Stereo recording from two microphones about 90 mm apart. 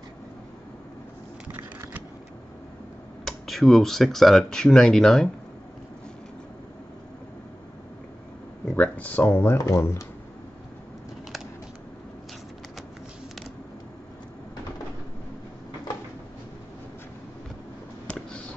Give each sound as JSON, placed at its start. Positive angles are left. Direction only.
{"t": 3.3, "sound": "speech", "side_deg": 0}
{"t": 8.7, "sound": "speech", "side_deg": 15}
{"t": 18.0, "sound": "a sound", "side_deg": 10}